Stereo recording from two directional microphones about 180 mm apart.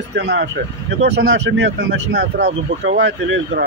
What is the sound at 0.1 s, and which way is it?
Speech, 75° right (ahead or behind).